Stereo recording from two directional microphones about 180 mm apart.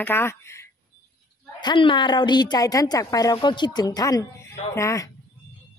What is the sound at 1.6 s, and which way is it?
A woman's voice, 25° left (ahead or behind).